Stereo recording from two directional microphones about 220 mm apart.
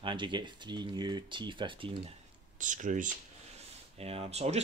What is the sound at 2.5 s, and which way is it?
Speech, 35° right (ahead or behind).